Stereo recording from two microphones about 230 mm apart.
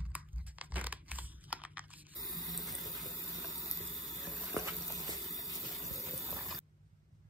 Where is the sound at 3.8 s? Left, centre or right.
Left.